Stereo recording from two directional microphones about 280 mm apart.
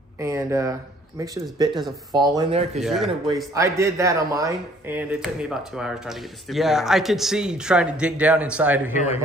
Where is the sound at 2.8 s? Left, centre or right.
Centre.